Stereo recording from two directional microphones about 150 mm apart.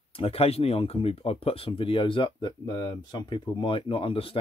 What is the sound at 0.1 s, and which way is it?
Speech, 40° left (ahead or behind).